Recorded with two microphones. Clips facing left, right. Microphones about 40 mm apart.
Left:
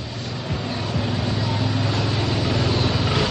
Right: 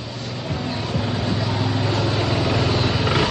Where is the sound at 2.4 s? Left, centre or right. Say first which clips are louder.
Right 2 dB; right.